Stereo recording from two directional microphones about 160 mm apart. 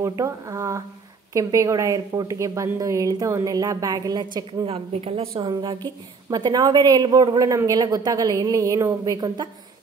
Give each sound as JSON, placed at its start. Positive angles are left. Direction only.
{"t": 0.2, "sound": "a woman's voice", "side_deg": -20}
{"t": 4.6, "sound": "a woman's voice", "side_deg": -35}